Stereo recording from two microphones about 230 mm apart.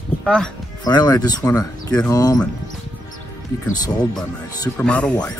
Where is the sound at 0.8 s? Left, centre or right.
Centre.